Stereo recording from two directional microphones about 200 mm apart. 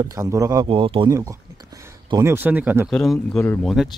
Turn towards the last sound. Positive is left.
turn(degrees=0)  # may be behind; listen again after turning